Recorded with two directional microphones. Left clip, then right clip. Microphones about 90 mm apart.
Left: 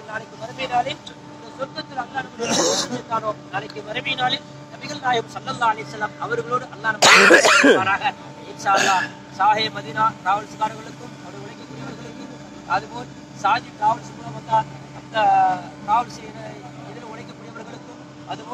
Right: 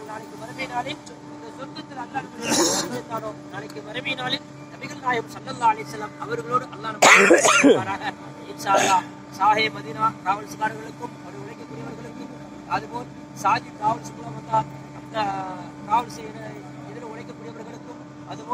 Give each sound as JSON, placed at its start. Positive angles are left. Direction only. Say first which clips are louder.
{"t": 0.1, "sound": "speech", "louder": "left 9 dB", "side_deg": 30}
{"t": 7.3, "sound": "speech", "louder": "left 3 dB", "side_deg": 40}
{"t": 8.6, "sound": "speech", "louder": "left 1 dB", "side_deg": 20}
{"t": 12.6, "sound": "speech", "louder": "left 4 dB", "side_deg": 25}
{"t": 15.1, "sound": "speech", "louder": "left 10 dB", "side_deg": 30}